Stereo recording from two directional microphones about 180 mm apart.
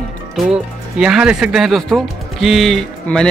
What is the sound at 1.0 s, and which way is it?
Speech, 5° right (ahead or behind).